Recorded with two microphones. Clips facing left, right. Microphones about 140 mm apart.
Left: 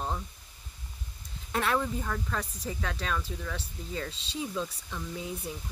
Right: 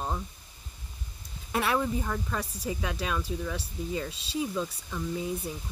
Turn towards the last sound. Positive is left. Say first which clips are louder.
# right 5 dB
turn(degrees=-5)  # may be behind; listen again after turning